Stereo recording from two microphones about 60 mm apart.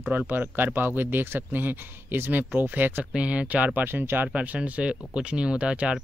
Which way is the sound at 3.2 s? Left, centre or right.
Right.